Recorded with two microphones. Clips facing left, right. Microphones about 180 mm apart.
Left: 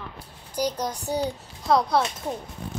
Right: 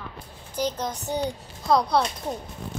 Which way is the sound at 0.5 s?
10° left (ahead or behind).